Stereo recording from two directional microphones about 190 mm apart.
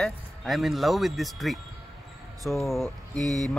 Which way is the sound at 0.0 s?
Centre (ahead or behind).